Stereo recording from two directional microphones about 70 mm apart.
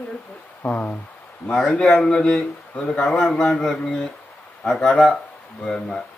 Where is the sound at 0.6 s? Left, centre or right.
Left.